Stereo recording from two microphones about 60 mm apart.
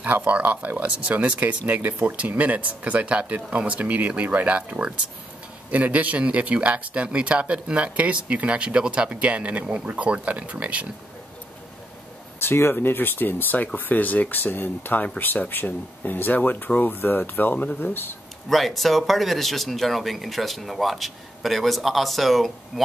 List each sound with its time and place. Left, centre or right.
0.0 s speech: right
12.4 s speech: left
18.5 s speech: centre